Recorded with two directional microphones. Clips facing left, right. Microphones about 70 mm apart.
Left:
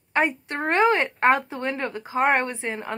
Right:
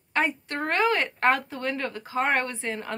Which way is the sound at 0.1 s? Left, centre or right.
Left.